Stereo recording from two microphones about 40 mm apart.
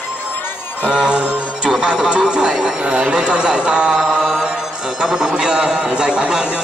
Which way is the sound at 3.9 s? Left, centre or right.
Centre.